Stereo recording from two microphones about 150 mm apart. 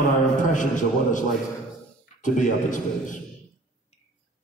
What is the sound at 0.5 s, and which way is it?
A man's voice, 55° left (ahead or behind).